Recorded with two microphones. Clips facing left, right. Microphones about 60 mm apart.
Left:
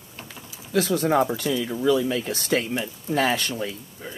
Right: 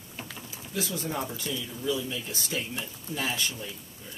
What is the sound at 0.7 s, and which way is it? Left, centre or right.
Speech, left.